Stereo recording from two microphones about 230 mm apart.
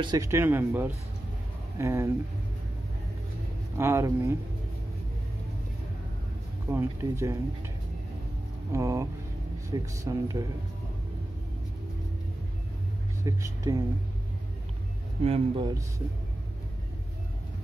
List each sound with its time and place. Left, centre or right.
0.0 s speech: centre
3.7 s speech: centre
6.7 s speech: centre
8.7 s speech: centre
13.2 s speech: centre
15.2 s speech: right